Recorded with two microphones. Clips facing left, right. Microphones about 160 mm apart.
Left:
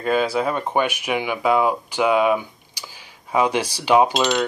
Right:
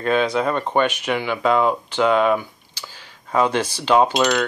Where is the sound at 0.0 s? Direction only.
5° left (ahead or behind).